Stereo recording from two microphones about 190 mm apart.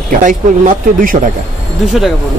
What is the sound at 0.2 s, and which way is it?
Speech, 45° right (ahead or behind).